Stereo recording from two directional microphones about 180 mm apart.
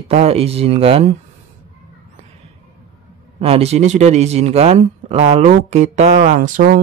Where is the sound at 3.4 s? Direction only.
35° right (ahead or behind).